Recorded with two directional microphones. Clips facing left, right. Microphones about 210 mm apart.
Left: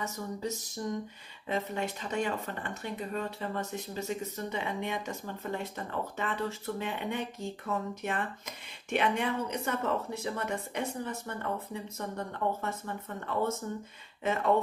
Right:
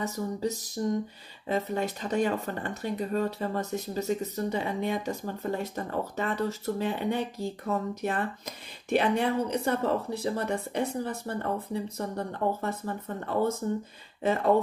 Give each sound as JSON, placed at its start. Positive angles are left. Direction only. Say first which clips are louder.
{"t": 0.0, "sound": "speech", "louder": "right 5 dB", "side_deg": -35}